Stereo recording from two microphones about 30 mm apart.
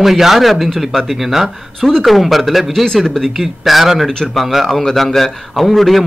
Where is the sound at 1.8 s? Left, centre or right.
Centre.